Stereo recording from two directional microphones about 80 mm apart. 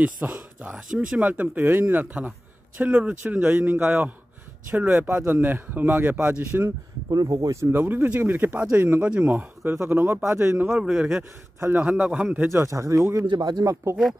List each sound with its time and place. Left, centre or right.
0.0 s a man's voice: centre
6.4 s speech: right
7.1 s speech: right
7.8 s speech: right
9.7 s speech: right
10.7 s a man's voice: centre
11.9 s a man's voice: centre
12.4 s speech: right
13.3 s speech: right